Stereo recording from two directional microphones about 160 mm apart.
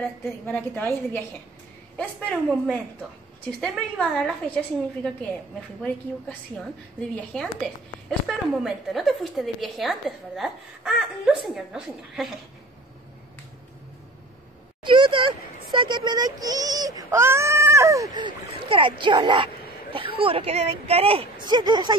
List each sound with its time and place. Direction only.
0.5 s a woman's voice: 10° left (ahead or behind)
7.0 s a woman's voice: 5° left (ahead or behind)
14.8 s speech: 30° right (ahead or behind)